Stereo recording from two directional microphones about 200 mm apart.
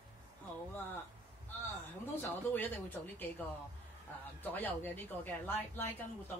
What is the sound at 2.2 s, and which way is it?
Speech, 10° left (ahead or behind).